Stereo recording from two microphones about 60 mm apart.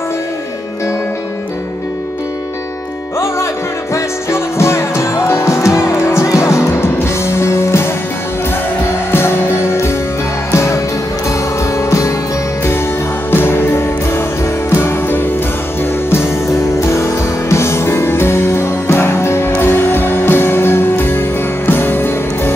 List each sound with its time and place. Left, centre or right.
3.9 s music: left
9.1 s music: left
13.3 s music: left
17.5 s music: left